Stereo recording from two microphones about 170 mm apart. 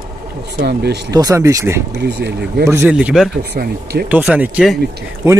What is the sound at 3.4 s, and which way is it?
Speech, 70° right (ahead or behind).